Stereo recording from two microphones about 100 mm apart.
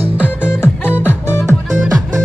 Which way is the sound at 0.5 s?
20° left (ahead or behind).